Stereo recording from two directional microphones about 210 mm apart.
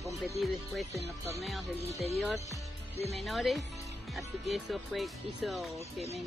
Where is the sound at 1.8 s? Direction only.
30° left (ahead or behind).